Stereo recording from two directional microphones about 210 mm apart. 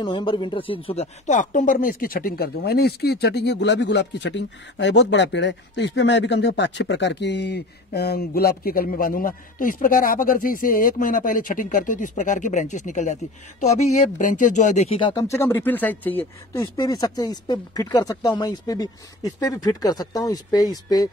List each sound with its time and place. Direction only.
0.0 s speech: 20° left (ahead or behind)